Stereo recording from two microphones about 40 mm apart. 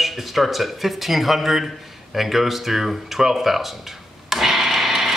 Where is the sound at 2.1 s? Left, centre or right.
Centre.